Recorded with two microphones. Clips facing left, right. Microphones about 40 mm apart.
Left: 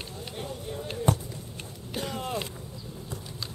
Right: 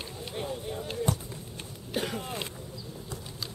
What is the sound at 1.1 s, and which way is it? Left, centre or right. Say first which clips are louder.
Speech: left 6 dB; left.